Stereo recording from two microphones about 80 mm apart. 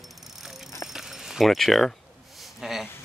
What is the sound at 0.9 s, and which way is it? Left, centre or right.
Keys jangling, centre.